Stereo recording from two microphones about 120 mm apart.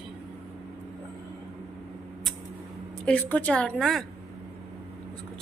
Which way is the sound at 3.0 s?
15° left (ahead or behind).